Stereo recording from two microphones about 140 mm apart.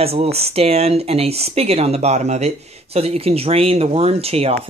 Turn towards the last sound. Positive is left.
turn(degrees=-45)  # may be behind; listen again after turning